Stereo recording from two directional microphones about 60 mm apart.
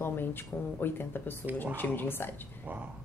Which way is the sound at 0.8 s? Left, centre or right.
Left.